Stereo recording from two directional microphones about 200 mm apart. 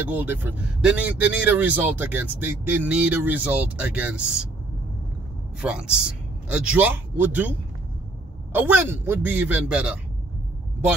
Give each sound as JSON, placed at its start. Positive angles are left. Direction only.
{"t": 0.1, "sound": "speech", "side_deg": -10}
{"t": 5.6, "sound": "a man's voice", "side_deg": -5}
{"t": 8.5, "sound": "speech", "side_deg": -10}